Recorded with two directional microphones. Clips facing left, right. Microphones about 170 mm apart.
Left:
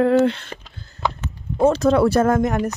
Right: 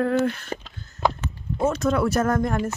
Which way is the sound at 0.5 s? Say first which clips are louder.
Right 5 dB; 30° right (ahead or behind).